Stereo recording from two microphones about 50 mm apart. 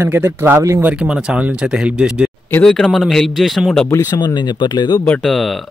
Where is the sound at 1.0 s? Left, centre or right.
Right.